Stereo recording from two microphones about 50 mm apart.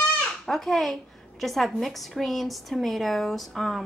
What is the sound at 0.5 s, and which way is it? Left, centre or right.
A woman's voice, centre.